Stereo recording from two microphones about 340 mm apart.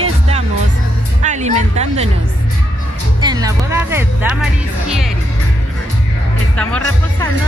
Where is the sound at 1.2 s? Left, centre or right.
Centre.